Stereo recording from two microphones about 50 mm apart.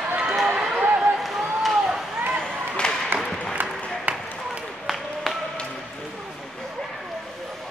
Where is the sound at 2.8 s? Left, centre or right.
Centre.